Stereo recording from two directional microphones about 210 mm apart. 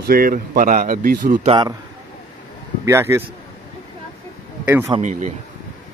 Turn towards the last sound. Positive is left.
turn(degrees=-35)  # may be behind; listen again after turning